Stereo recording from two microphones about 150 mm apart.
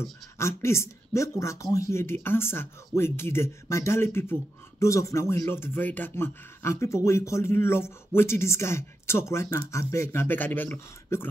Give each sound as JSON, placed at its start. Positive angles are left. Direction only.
{"t": 0.4, "sound": "speech", "side_deg": 15}